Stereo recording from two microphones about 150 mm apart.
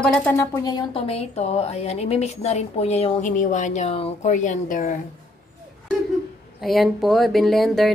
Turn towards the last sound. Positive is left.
turn(degrees=0)  # may be behind; listen again after turning